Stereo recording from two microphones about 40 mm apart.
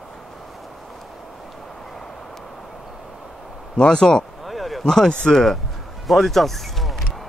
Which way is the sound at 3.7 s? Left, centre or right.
Left.